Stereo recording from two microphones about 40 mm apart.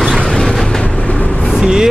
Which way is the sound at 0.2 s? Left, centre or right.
Centre.